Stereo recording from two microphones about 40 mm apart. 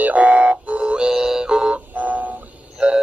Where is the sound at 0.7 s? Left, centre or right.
Centre.